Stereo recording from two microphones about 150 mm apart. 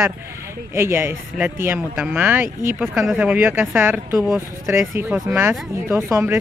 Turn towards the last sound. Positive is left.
turn(degrees=-15)  # may be behind; listen again after turning